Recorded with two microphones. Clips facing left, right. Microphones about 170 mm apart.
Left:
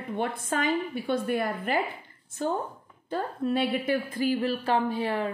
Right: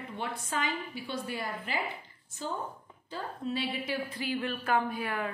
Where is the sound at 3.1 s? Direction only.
55° left (ahead or behind); by 5.3 s 30° left (ahead or behind).